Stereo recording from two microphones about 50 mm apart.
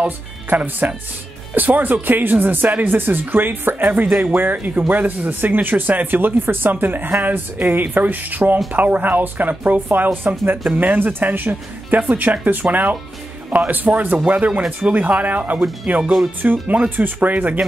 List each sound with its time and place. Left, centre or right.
0.6 s speech: right